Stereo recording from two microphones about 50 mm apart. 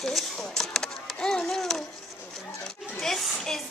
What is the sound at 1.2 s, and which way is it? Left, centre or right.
Speech, centre.